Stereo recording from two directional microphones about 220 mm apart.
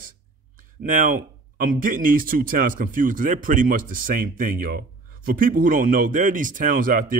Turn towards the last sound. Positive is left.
turn(degrees=-40)  # may be behind; listen again after turning